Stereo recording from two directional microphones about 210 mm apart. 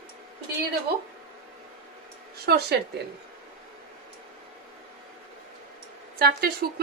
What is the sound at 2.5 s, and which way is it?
Speech, 50° right (ahead or behind).